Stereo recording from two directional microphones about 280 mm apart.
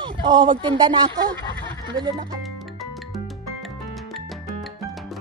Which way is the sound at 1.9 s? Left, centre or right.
Centre.